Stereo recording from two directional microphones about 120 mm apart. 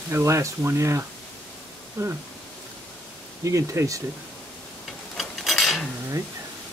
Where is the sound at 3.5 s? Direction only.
25° right (ahead or behind).